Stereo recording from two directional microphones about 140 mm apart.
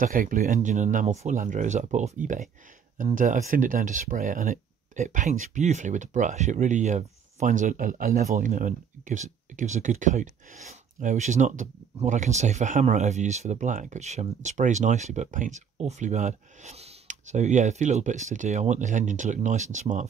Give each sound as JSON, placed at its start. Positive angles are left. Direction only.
{"t": 0.0, "sound": "speech", "side_deg": -75}